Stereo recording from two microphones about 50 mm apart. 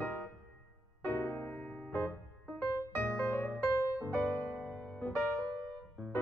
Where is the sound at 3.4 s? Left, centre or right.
Left.